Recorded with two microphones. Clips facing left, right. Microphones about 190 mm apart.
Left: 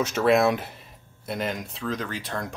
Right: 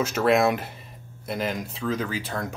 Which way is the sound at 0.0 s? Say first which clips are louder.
Even; centre (ahead or behind).